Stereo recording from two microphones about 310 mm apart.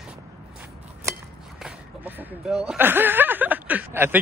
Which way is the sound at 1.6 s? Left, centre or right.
Centre.